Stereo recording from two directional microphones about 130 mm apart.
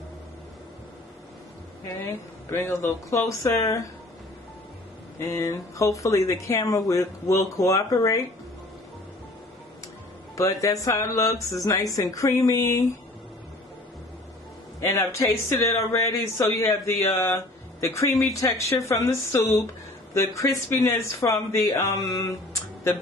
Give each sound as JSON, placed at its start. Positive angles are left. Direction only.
{"t": 2.0, "sound": "speech", "side_deg": 20}
{"t": 5.2, "sound": "speech", "side_deg": 20}
{"t": 10.3, "sound": "speech", "side_deg": 25}
{"t": 14.8, "sound": "speech", "side_deg": 20}